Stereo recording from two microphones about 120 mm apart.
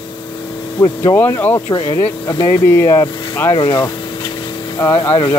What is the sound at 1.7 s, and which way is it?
Speech, 35° left (ahead or behind).